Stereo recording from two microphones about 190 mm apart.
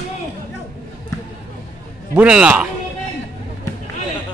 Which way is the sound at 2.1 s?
5° right (ahead or behind).